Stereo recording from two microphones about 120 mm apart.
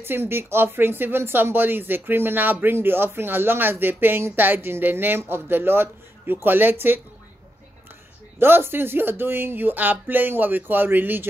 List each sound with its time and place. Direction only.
0.0 s speech: 20° right (ahead or behind)
8.4 s speech: 20° right (ahead or behind)